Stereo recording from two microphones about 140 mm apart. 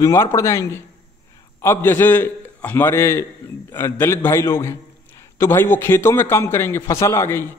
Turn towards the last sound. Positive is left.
turn(degrees=20)  # may be behind; listen again after turning